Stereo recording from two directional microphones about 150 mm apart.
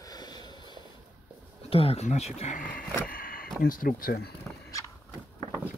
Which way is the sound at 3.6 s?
70° left (ahead or behind).